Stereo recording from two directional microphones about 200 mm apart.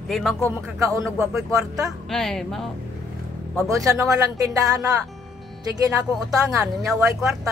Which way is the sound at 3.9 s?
15° right (ahead or behind).